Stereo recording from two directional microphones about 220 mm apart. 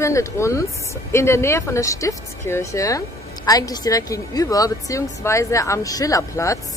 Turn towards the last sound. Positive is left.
turn(degrees=15)  # may be behind; listen again after turning